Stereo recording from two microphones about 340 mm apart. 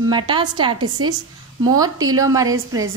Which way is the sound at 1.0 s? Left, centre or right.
Right.